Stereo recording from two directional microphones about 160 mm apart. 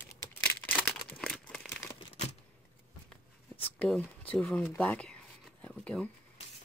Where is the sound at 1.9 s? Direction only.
45° left (ahead or behind).